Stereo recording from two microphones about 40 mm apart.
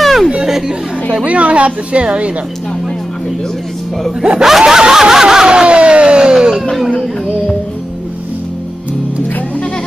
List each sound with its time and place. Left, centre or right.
0.0 s chatter: centre
0.5 s chatter: centre
1.2 s a woman's voice: right
4.4 s snicker: centre